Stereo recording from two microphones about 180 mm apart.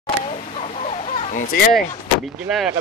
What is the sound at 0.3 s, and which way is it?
Chicken, 35° left (ahead or behind).